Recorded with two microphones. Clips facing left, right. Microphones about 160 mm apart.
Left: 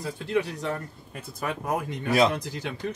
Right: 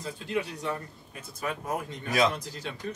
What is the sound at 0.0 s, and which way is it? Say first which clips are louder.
Speech: left 5 dB; 65° left (ahead or behind).